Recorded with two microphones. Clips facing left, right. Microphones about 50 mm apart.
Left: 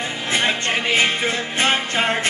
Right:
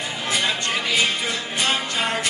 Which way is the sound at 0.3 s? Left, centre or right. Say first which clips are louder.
Left 3 dB; left.